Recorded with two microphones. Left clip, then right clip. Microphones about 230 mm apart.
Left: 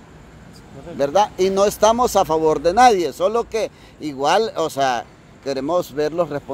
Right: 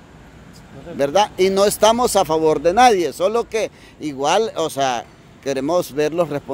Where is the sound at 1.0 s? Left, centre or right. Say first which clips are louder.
Right 1 dB; centre.